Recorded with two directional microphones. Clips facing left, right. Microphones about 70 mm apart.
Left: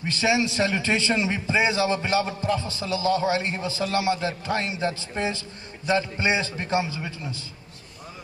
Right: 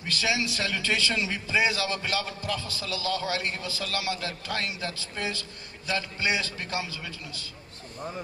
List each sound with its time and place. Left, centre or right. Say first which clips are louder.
0.0 s a man's voice: left 6 dB; left